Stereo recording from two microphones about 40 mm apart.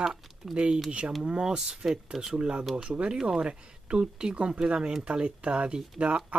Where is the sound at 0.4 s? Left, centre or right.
Centre.